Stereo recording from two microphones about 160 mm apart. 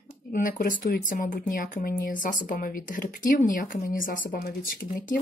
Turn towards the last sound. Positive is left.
turn(degrees=65)  # may be behind; listen again after turning